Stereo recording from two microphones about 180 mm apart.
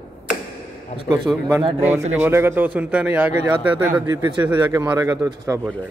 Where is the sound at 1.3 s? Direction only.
10° right (ahead or behind).